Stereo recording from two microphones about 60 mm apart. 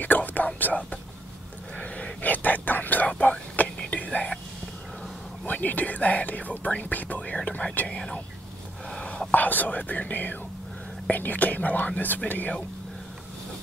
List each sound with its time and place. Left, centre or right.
0.0 s whispering: left
0.6 s speech: left
2.2 s a sound: left
3.9 s whispering: left
5.4 s speech: left
7.9 s speech: centre
8.9 s whispering: centre
9.3 s speech: left